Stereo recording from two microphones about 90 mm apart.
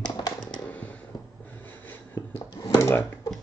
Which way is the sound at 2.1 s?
40° left (ahead or behind).